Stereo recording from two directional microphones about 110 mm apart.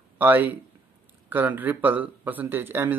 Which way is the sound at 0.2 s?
15° right (ahead or behind).